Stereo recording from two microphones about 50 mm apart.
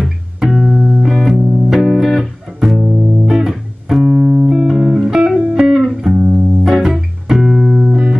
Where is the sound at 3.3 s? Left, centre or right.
Centre.